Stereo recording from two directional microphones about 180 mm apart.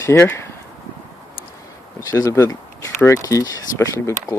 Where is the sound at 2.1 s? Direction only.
15° left (ahead or behind).